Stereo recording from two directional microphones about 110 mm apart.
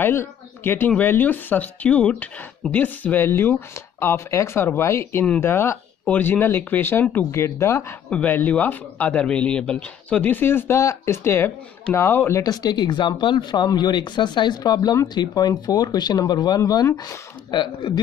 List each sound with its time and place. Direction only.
0.0 s speech: 20° left (ahead or behind)
8.1 s speech: 15° left (ahead or behind)
12.4 s speech: 40° left (ahead or behind)